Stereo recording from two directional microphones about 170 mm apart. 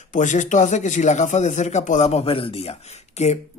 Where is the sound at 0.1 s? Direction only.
45° left (ahead or behind).